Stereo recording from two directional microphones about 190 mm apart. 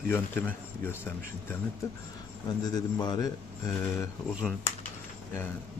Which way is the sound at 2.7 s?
20° left (ahead or behind).